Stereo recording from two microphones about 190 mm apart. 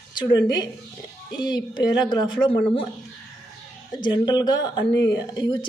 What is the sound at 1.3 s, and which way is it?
A man's voice, 20° left (ahead or behind).